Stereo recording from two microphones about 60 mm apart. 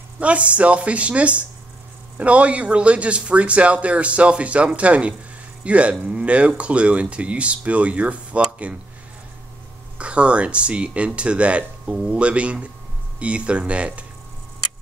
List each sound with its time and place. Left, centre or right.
0.2 s speech: right
8.5 s a sound: right
9.9 s speech: centre